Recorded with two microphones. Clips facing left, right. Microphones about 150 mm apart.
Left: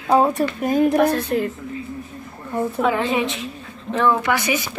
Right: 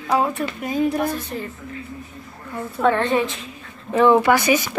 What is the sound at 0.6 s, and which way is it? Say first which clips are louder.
Speech: left 5 dB; 50° left (ahead or behind).